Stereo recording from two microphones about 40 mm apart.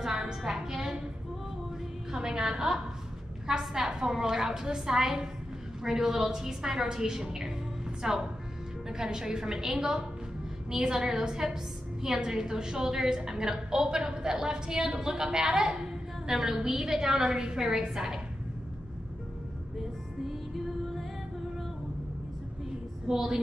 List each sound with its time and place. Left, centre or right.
0.0 s music: centre
2.1 s a sound: centre
3.4 s a woman's voice: centre
20.2 s music: centre
23.0 s a woman's voice: centre